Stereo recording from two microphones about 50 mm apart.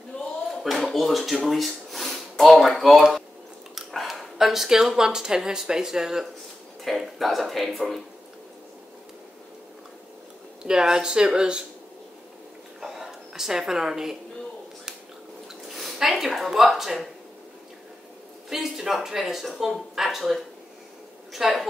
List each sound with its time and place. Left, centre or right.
0.1 s a sound: left
0.7 s speech: centre
10.6 s speech: centre
12.8 s a sound: centre
15.7 s speech: centre
18.5 s a woman's voice: centre